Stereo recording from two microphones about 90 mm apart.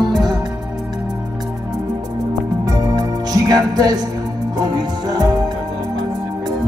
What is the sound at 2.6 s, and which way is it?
Music, 45° right (ahead or behind).